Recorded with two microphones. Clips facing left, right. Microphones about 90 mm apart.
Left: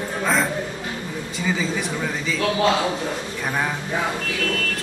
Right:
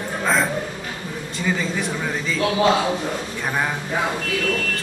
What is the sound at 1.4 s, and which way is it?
Speech, 5° left (ahead or behind).